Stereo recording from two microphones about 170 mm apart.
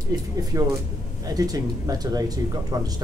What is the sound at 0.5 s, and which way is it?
Speech, 20° right (ahead or behind).